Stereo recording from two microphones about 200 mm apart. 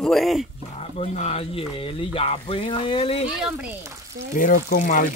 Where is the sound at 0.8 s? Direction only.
30° left (ahead or behind).